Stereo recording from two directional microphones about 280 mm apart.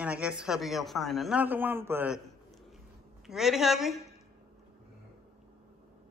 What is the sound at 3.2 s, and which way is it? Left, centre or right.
Speech, centre.